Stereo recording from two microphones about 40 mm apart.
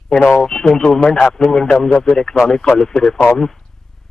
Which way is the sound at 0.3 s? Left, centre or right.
Centre.